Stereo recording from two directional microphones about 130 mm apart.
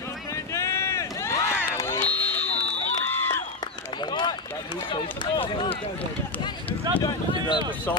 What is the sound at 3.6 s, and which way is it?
Run, 35° left (ahead or behind).